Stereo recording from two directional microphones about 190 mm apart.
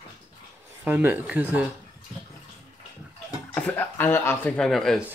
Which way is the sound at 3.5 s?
10° left (ahead or behind).